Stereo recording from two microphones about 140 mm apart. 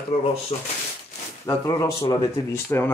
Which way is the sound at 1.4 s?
30° left (ahead or behind).